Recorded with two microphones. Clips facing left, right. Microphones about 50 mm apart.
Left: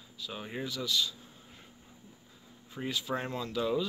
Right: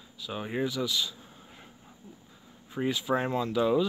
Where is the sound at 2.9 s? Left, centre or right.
Right.